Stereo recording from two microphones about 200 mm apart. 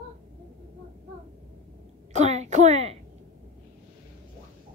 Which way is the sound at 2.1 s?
35° right (ahead or behind).